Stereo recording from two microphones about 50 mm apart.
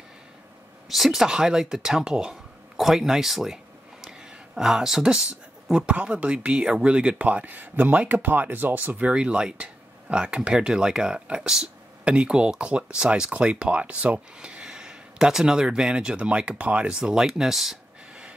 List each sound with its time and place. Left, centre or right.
0.8 s speech: centre
4.6 s speech: centre; by 9.1 s right
9.1 s speech: right
12.0 s speech: right
17.0 s speech: centre